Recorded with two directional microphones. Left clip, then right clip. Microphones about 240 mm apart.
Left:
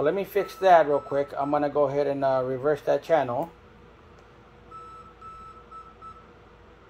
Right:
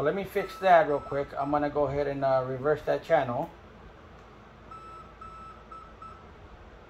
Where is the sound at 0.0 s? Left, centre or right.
Left.